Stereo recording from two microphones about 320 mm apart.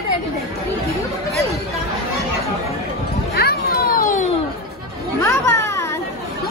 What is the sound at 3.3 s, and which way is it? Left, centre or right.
Children playing, left.